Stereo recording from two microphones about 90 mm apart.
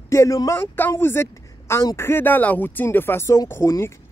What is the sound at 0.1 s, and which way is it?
Speech, 35° left (ahead or behind).